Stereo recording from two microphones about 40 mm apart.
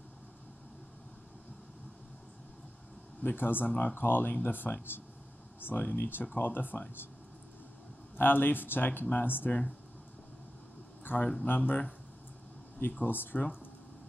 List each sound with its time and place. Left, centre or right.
3.2 s speech: left
3.6 s speech: left
4.0 s speech: left
4.5 s speech: left
8.2 s speech: left
11.1 s speech: left
11.4 s speech: left
13.0 s speech: left